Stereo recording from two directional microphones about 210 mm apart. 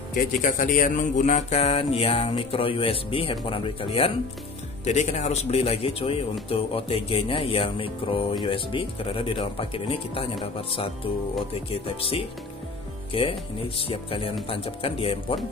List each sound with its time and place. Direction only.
0.1 s speech: 40° left (ahead or behind)